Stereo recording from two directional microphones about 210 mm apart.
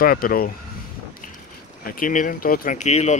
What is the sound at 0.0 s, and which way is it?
Speech, 45° left (ahead or behind).